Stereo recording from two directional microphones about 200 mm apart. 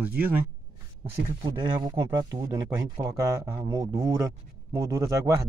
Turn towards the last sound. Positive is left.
turn(degrees=-15)  # may be behind; listen again after turning